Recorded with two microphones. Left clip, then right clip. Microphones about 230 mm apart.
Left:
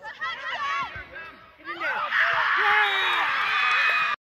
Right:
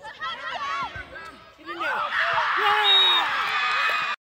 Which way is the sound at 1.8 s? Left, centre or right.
Left.